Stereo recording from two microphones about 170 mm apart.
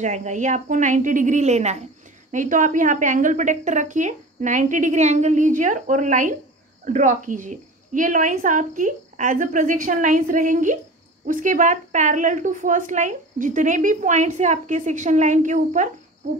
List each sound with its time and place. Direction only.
0.0 s a woman's voice: 45° right (ahead or behind)